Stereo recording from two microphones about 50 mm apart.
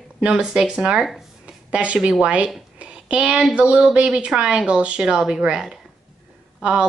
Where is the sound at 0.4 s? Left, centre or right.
Centre.